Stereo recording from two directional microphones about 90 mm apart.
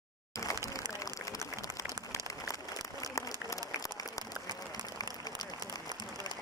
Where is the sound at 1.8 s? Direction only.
35° left (ahead or behind).